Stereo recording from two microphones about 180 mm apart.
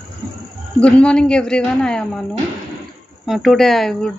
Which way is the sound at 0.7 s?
5° left (ahead or behind).